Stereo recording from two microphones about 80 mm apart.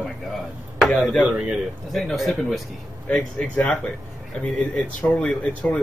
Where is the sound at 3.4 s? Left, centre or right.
Centre.